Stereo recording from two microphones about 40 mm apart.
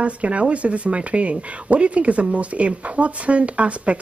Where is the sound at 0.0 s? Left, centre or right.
Right.